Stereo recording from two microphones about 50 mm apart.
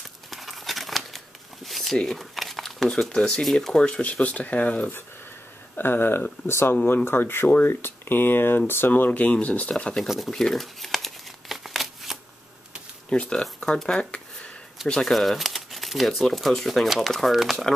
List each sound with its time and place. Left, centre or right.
0.3 s crumpling: centre
2.0 s speech: centre
3.2 s speech: centre
4.0 s speech: left
5.8 s speech: left
7.4 s speech: left
7.7 s speech: left
10.0 s speech: centre
10.3 s crumpling: centre
13.1 s speech: centre
15.0 s speech: centre